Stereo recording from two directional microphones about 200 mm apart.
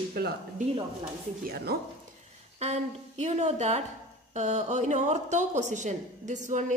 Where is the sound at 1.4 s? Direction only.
50° right (ahead or behind).